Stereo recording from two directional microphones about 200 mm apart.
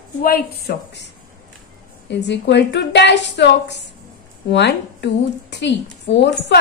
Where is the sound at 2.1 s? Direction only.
60° left (ahead or behind).